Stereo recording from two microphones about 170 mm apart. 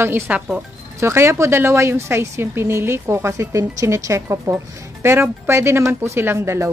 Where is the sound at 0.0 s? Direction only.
10° right (ahead or behind).